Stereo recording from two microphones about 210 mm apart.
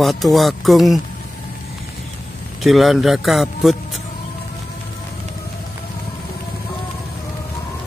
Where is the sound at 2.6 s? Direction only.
Centre (ahead or behind).